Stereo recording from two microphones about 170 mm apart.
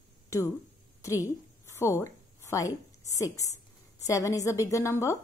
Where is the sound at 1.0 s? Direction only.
20° left (ahead or behind).